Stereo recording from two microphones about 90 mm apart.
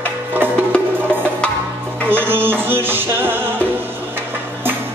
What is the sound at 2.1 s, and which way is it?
Music, 25° right (ahead or behind).